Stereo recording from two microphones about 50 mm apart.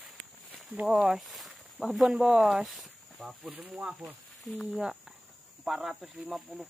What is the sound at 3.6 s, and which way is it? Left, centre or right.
Speech, centre.